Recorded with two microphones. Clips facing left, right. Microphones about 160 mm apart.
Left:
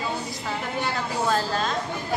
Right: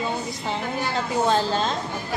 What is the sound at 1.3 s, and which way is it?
Speech, 25° right (ahead or behind).